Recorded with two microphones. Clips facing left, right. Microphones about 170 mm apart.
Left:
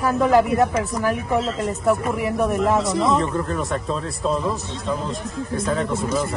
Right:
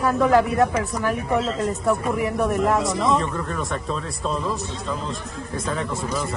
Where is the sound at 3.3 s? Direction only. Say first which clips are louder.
Left 3 dB; 35° left (ahead or behind).